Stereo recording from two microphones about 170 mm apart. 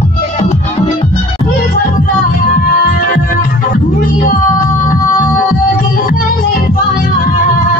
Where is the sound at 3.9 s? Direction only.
55° left (ahead or behind).